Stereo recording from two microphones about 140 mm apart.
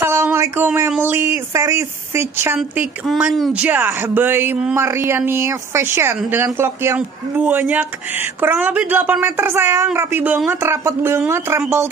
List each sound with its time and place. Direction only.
0.0 s a man's voice: 15° right (ahead or behind)
3.1 s a man's voice: centre (ahead or behind); by 11.6 s 15° right (ahead or behind)